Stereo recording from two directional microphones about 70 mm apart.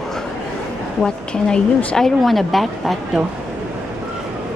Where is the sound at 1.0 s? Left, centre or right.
Centre.